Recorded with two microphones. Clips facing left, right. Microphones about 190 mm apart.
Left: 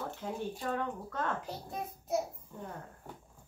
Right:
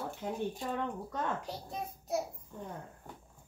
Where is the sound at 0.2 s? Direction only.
15° right (ahead or behind).